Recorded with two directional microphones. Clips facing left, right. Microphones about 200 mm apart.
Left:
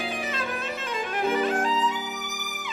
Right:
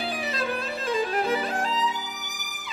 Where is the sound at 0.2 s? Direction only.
35° right (ahead or behind).